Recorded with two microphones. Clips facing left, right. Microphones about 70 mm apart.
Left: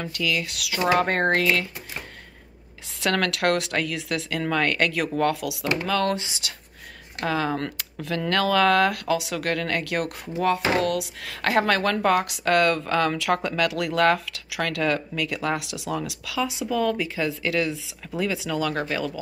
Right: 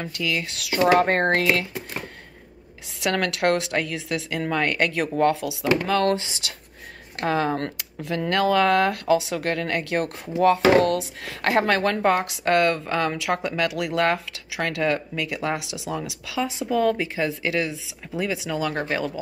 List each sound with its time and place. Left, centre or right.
0.0 s speech: right
3.0 s speech: centre; by 7.7 s right
7.7 s speech: right